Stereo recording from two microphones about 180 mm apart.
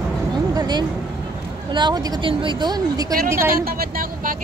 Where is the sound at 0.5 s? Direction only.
20° right (ahead or behind).